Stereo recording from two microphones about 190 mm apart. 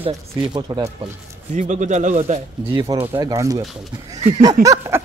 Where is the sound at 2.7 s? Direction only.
20° right (ahead or behind).